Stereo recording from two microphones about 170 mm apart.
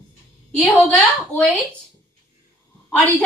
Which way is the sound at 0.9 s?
5° left (ahead or behind).